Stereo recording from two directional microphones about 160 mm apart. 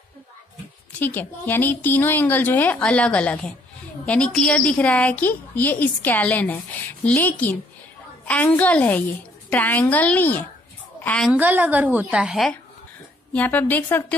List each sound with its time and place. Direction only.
0.9 s a woman's voice: 10° left (ahead or behind)
11.3 s a woman's voice: 10° right (ahead or behind)
13.3 s a woman's voice: 10° left (ahead or behind)